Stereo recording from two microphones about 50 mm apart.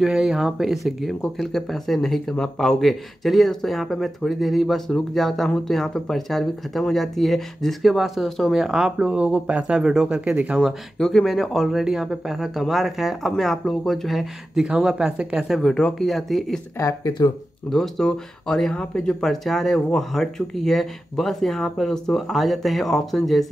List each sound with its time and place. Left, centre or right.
0.0 s speech: centre
2.8 s speech: centre; by 10.6 s right
11.0 s speech: centre
11.2 s speech: centre
14.1 s speech: centre
16.0 s speech: centre
17.6 s speech: centre